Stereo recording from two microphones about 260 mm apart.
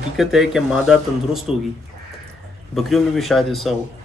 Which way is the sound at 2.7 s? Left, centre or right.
Centre.